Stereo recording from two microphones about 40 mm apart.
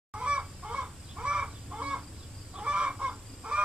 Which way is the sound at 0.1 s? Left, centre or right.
Right.